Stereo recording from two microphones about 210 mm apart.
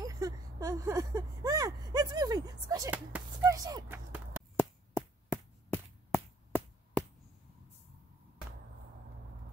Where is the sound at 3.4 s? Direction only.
15° right (ahead or behind).